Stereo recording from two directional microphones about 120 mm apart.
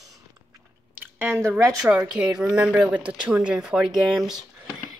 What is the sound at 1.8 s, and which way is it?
Speech, 10° right (ahead or behind).